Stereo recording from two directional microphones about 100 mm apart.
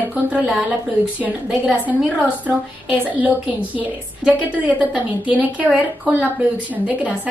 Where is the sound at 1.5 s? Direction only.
15° right (ahead or behind).